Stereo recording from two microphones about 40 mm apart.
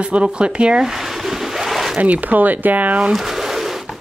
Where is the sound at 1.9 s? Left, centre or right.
Right.